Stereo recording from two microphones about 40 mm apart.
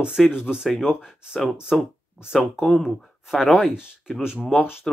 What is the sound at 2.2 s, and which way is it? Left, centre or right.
Speech, centre.